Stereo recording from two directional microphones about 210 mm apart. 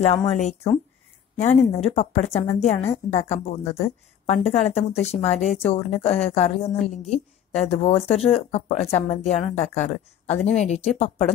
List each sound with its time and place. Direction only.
0.0 s a woman's voice: 30° left (ahead or behind)